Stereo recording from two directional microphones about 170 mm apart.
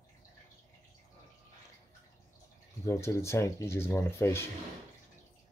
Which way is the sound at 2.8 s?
15° left (ahead or behind).